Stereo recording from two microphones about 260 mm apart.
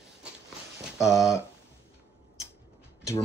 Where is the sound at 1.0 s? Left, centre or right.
Centre.